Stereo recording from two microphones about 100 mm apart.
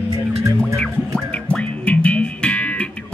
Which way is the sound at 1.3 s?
15° left (ahead or behind).